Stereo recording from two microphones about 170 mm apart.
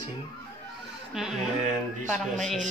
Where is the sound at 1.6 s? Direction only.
45° right (ahead or behind).